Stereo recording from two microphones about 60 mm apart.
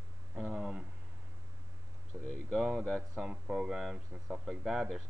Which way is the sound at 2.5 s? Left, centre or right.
Centre.